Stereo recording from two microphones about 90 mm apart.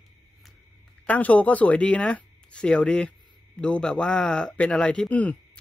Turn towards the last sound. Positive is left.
turn(degrees=15)  # may be behind; listen again after turning